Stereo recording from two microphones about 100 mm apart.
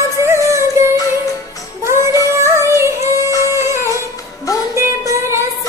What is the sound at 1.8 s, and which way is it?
Child singing, 25° right (ahead or behind).